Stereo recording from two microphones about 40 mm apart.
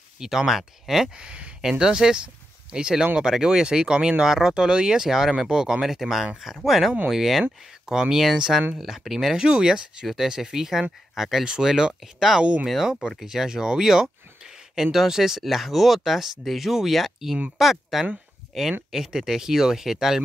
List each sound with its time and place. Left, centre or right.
0.2 s speech: centre
1.2 s speech: right
1.6 s speech: centre
8.7 s speech: centre